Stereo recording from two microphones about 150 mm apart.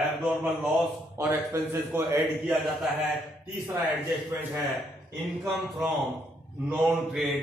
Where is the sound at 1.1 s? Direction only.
15° right (ahead or behind).